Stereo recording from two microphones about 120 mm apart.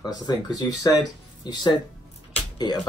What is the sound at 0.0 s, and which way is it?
Speech, 30° left (ahead or behind).